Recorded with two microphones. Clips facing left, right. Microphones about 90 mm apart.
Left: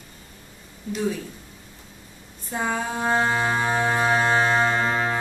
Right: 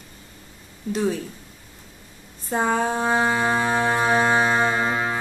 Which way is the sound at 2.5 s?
40° right (ahead or behind).